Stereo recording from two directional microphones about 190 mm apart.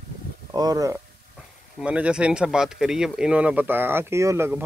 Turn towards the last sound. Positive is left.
turn(degrees=-10)  # may be behind; listen again after turning